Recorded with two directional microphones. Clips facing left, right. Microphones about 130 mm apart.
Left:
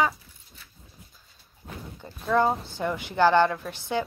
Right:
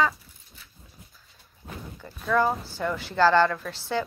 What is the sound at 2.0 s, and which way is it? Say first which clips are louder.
A woman's voice: left 1 dB; 20° left (ahead or behind).